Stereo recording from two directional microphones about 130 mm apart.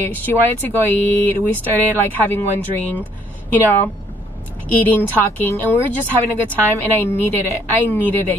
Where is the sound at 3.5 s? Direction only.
15° left (ahead or behind).